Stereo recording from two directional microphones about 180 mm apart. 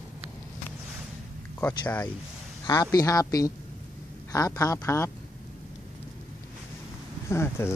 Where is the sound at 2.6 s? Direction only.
20° left (ahead or behind).